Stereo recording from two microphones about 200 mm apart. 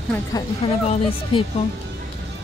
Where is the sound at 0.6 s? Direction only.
25° left (ahead or behind).